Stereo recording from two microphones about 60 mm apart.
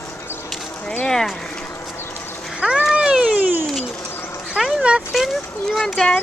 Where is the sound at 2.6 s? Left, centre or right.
Centre.